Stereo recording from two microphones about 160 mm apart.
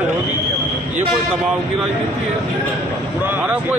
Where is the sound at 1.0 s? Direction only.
5° right (ahead or behind).